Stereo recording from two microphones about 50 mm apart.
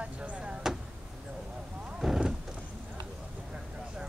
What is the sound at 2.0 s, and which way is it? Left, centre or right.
Horse, centre.